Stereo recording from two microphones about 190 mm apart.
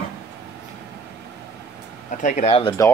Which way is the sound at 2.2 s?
40° left (ahead or behind).